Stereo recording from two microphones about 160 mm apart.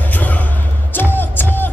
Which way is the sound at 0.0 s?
10° left (ahead or behind).